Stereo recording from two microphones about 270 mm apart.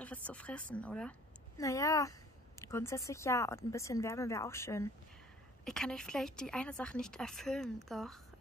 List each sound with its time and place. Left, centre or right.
0.0 s speech: centre